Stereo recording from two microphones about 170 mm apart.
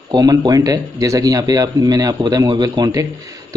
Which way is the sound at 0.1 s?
25° right (ahead or behind).